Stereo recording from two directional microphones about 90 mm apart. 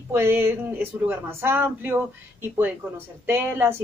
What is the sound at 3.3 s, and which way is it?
Speech, 25° right (ahead or behind).